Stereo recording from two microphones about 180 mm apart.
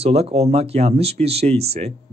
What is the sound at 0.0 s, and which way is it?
Speech, 35° right (ahead or behind).